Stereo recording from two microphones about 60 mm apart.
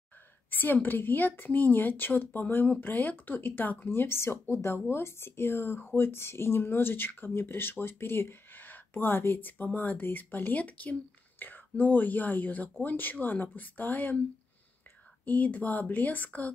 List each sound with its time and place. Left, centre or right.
0.5 s speech: left
15.2 s speech: left